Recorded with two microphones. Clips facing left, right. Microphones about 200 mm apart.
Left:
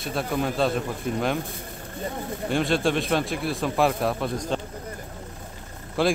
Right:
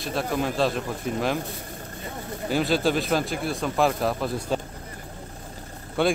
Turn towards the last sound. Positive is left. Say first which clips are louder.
# even
turn(degrees=0)  # may be behind; listen again after turning